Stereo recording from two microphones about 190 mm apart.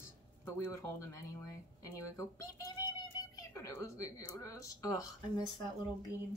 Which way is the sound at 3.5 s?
15° left (ahead or behind).